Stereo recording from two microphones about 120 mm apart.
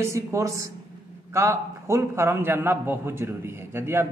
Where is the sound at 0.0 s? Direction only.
25° right (ahead or behind).